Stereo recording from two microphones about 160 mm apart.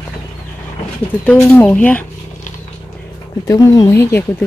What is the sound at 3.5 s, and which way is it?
Speech, 20° left (ahead or behind).